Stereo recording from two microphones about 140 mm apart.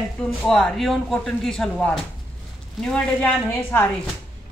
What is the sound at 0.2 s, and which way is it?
A man's voice, 5° left (ahead or behind).